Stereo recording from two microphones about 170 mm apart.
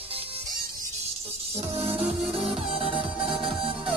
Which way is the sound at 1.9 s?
5° right (ahead or behind).